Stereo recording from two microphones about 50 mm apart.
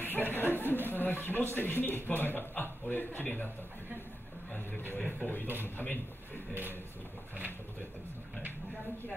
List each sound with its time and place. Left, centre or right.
0.0 s a sound: left
1.2 s a man's voice: left
5.0 s speech: left